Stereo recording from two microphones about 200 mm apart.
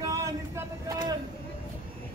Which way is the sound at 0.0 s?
15° right (ahead or behind).